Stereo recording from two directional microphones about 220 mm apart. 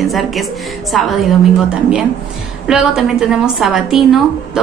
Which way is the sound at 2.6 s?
Centre (ahead or behind).